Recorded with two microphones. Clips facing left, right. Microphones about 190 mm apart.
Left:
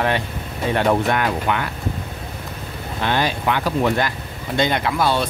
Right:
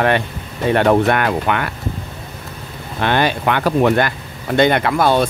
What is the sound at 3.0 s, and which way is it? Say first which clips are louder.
Speech: right 4 dB; 60° right (ahead or behind).